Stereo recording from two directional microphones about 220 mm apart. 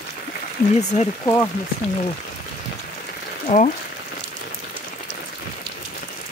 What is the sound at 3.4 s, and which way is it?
Speech, 35° left (ahead or behind).